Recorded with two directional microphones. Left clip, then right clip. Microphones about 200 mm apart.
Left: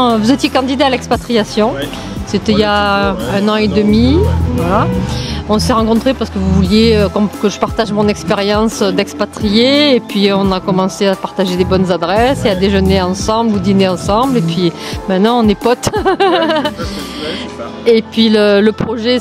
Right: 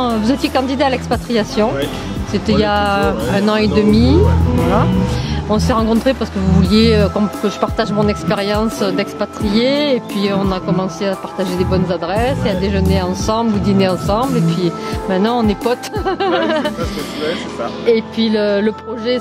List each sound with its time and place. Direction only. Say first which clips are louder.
0.0 s speech: left 5 dB; 30° left (ahead or behind)
5.5 s speech: left 3 dB; 25° left (ahead or behind)
17.8 s speech: left 5 dB; 35° left (ahead or behind)